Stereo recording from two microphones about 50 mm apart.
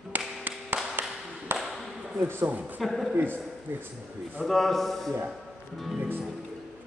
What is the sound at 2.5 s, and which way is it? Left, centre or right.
Speech, right.